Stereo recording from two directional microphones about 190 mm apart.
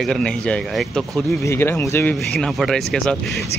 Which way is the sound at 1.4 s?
15° left (ahead or behind).